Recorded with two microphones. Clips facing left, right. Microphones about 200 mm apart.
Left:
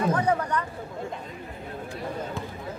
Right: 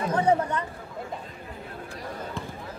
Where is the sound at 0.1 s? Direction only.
25° right (ahead or behind).